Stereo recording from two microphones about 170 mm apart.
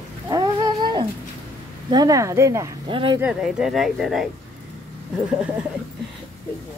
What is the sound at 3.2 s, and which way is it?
Speech, 5° right (ahead or behind).